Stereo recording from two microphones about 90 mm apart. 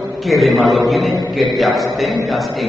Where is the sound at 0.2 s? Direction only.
Centre (ahead or behind).